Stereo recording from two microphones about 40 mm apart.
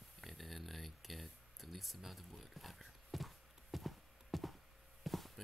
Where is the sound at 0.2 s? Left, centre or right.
Centre.